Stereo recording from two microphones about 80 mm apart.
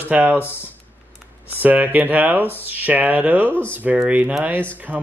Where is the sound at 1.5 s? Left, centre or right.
Centre.